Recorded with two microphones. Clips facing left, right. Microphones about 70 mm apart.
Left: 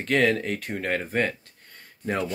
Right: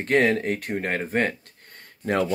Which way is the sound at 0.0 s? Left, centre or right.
Right.